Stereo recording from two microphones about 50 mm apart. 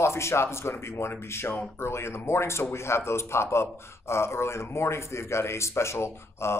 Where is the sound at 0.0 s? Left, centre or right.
Left.